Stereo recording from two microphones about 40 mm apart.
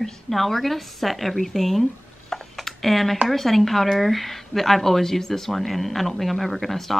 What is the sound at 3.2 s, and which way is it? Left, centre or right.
A woman's voice, centre.